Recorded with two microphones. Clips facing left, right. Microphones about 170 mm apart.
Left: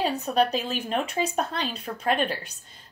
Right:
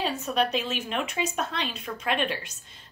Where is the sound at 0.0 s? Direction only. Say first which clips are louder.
Left 3 dB; 35° left (ahead or behind).